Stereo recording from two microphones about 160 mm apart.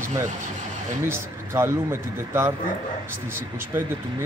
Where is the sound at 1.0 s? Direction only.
15° right (ahead or behind).